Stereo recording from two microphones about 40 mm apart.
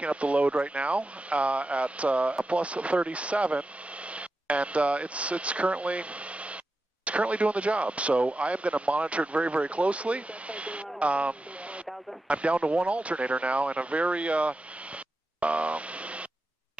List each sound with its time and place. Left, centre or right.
0.0 s speech: right